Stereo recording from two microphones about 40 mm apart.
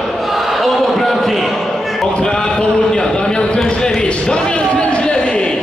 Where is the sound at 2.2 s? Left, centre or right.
Centre.